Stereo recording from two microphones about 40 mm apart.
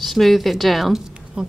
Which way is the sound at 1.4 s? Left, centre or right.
Right.